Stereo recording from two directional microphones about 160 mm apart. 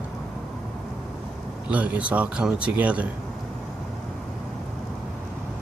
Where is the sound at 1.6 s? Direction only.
10° right (ahead or behind).